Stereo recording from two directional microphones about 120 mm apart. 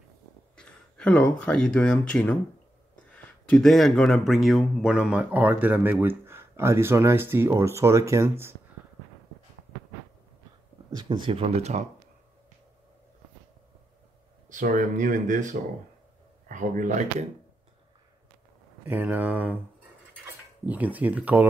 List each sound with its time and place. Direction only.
0.6 s a sound: 5° left (ahead or behind)
1.4 s speech: 5° left (ahead or behind); by 8.5 s 20° right (ahead or behind)
10.9 s speech: 35° right (ahead or behind)
11.4 s speech: 65° right (ahead or behind)
14.5 s speech: 90° right
18.9 s speech: 15° right (ahead or behind)
20.6 s speech: 15° right (ahead or behind)